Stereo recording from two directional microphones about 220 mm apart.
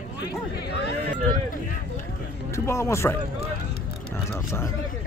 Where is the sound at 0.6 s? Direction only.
45° left (ahead or behind).